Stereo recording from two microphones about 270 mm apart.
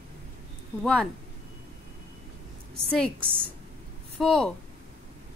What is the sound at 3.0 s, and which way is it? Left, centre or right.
Speech, right.